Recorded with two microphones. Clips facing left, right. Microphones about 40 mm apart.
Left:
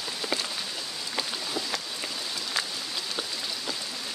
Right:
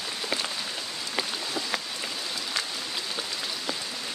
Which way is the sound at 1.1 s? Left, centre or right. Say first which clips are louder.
Right 1 dB; centre.